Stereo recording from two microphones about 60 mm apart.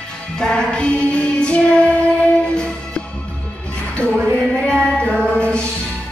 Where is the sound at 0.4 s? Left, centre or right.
Centre.